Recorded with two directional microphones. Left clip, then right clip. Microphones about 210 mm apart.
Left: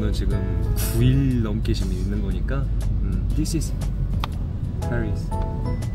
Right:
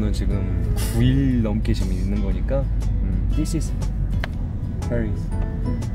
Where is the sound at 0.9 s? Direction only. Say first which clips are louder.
Right 2 dB; 20° right (ahead or behind).